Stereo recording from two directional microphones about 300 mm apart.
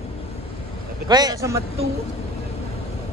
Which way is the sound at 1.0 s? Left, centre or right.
Centre.